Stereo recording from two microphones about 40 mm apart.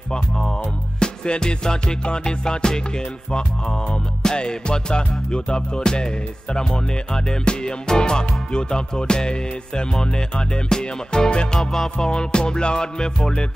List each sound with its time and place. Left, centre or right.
0.9 s music: left
4.2 s music: centre